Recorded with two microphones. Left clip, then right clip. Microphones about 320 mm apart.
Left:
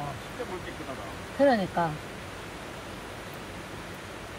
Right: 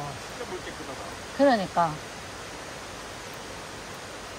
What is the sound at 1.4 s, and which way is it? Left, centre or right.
Speech, right.